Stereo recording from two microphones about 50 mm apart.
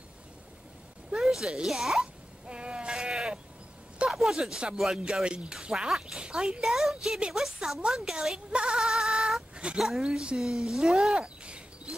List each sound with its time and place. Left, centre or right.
1.2 s speech: centre
2.4 s sheep: centre
4.1 s a sound: centre
4.4 s speech: centre
4.7 s speech: centre
5.2 s speech: centre
6.6 s speech: centre
8.5 s speech: centre
9.8 s speech: centre
11.1 s a sound: right